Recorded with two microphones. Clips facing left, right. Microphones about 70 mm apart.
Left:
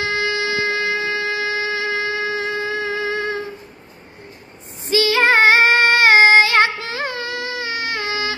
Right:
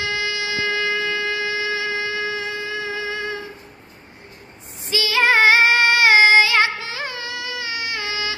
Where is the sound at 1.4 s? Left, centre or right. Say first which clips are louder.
Left 2 dB; left.